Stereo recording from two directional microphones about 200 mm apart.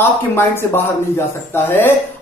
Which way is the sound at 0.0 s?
10° left (ahead or behind).